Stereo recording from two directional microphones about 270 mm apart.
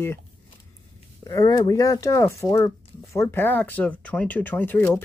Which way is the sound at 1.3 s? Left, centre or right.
Centre.